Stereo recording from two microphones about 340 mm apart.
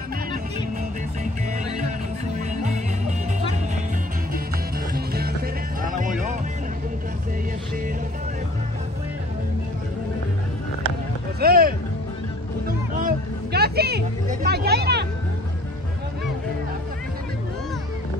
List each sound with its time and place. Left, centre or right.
1.8 s music: right
4.9 s music: right
11.3 s music: right
12.9 s a sound: right